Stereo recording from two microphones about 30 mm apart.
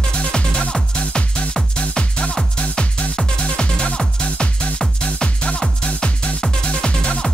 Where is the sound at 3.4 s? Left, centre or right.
Left.